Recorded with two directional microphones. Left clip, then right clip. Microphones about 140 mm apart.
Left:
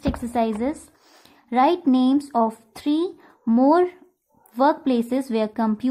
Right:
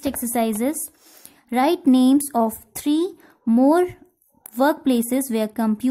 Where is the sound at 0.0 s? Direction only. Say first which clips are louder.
Even; 45° right (ahead or behind).